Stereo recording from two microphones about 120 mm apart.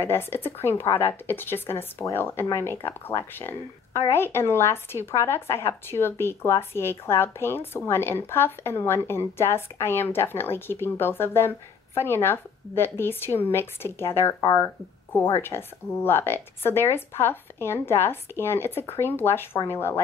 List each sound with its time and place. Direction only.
0.0 s speech: 20° left (ahead or behind)